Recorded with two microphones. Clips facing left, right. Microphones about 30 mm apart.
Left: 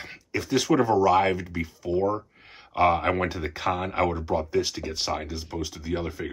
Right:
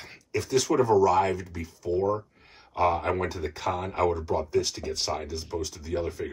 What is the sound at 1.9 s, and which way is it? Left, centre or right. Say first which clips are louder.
Speech: left 1 dB; centre.